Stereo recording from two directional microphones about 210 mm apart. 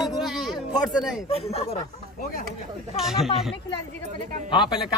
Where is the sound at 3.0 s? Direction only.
Centre (ahead or behind).